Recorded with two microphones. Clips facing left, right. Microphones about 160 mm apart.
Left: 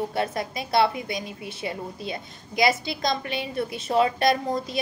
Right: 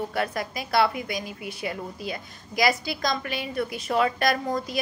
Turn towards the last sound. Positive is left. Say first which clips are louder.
# left 1 dB
turn(degrees=25)  # may be behind; listen again after turning